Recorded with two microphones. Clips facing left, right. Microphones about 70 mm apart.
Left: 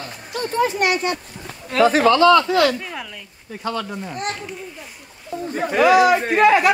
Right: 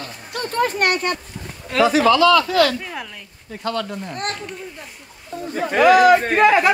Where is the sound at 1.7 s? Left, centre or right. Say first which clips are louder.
Even; left.